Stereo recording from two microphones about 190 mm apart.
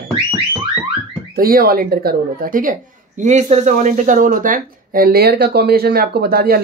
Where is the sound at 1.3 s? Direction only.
50° right (ahead or behind).